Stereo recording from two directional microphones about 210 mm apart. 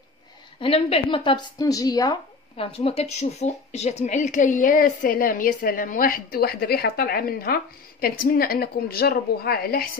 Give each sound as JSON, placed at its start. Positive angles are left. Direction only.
{"t": 0.6, "sound": "speech", "side_deg": 25}